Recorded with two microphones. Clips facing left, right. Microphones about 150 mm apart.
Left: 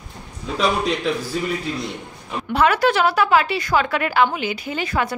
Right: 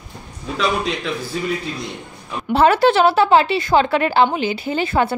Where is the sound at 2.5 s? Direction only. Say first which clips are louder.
Right 4 dB; 30° right (ahead or behind).